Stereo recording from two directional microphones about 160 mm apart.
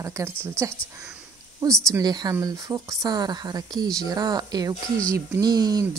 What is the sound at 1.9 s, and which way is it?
Speech, 25° right (ahead or behind).